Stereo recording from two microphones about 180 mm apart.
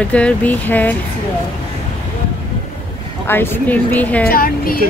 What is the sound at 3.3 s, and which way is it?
Speech, 10° left (ahead or behind).